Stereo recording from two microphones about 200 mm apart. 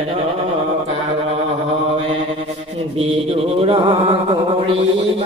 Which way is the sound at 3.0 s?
30° right (ahead or behind).